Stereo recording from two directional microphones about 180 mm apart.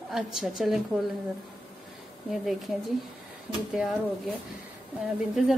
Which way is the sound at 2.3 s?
Centre (ahead or behind).